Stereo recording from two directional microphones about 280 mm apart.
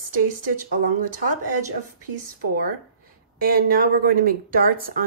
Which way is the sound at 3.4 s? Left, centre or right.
Right.